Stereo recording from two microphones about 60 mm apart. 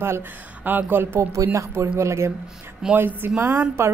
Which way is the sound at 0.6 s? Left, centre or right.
Right.